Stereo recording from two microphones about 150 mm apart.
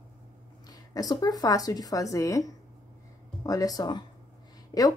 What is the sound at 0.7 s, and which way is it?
Speech, 25° left (ahead or behind).